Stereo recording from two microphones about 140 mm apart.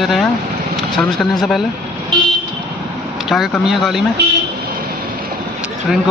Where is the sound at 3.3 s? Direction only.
Centre (ahead or behind).